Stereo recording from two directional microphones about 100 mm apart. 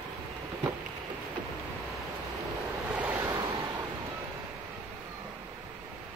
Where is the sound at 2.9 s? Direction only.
15° right (ahead or behind).